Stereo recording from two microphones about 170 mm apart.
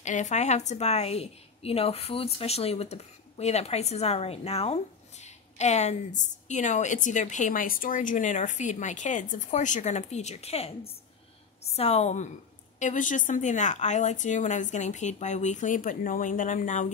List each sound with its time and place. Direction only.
0.0 s a woman's voice: 45° left (ahead or behind)